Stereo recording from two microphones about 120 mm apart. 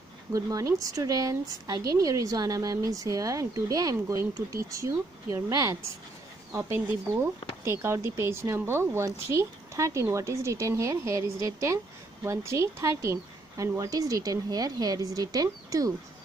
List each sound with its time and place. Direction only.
0.3 s a woman's voice: 30° right (ahead or behind)
7.6 s a woman's voice: 20° right (ahead or behind)